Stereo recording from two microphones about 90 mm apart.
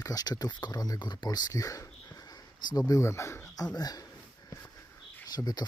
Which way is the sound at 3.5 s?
45° left (ahead or behind).